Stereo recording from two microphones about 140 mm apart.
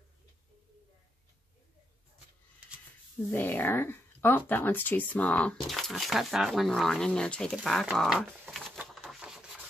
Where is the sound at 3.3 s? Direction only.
15° left (ahead or behind).